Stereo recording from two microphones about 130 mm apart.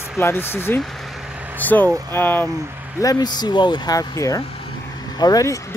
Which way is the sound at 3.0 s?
30° left (ahead or behind).